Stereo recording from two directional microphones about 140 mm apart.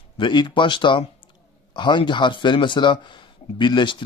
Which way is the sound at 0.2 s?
35° left (ahead or behind).